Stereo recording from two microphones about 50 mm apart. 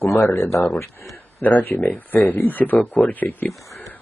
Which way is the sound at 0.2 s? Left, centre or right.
Left.